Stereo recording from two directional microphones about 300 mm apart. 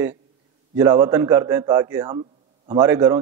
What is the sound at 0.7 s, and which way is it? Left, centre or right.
A man's voice, centre.